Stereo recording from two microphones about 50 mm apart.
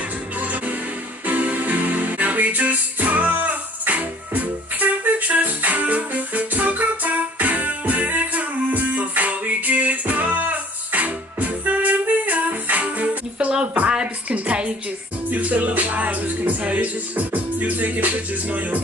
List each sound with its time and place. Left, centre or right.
0.4 s music: right
13.8 s a sound: right
15.2 s music: right